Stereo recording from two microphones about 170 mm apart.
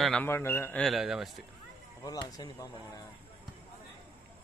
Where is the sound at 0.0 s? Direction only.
5° left (ahead or behind).